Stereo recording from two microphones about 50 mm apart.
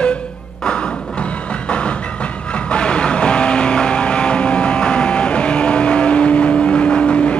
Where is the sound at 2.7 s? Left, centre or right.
Left.